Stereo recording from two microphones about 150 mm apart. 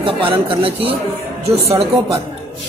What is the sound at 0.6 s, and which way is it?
Speech, 40° right (ahead or behind).